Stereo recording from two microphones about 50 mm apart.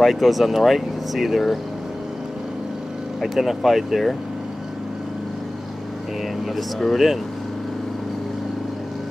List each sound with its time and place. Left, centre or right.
0.0 s speech: centre
3.2 s speech: centre
6.4 s speech: centre